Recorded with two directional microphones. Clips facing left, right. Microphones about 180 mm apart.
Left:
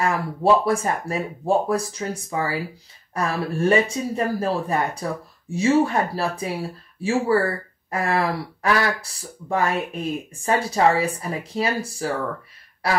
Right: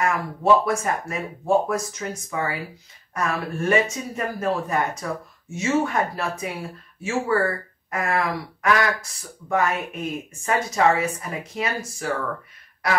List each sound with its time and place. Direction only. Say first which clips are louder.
0.0 s speech: left 2 dB; 30° left (ahead or behind)
12.8 s honk: left 1 dB; 30° left (ahead or behind)